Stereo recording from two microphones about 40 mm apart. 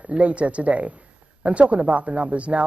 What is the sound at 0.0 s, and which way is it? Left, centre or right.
Speech, right.